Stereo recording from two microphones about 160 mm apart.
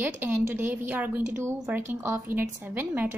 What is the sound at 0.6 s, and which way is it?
Speech, 15° right (ahead or behind).